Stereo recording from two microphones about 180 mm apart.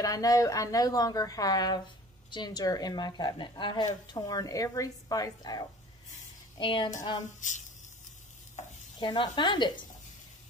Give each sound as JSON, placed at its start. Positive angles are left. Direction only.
{"t": 0.0, "sound": "speech", "side_deg": 20}
{"t": 7.3, "sound": "speech", "side_deg": 45}
{"t": 9.0, "sound": "speech", "side_deg": 25}